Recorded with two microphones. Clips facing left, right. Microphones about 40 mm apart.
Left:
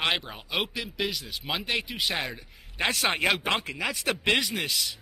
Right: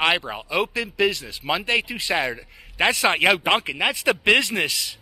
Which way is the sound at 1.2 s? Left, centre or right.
Right.